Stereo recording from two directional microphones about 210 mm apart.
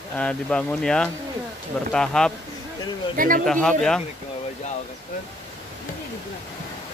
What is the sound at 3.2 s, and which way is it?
Speech, 40° right (ahead or behind).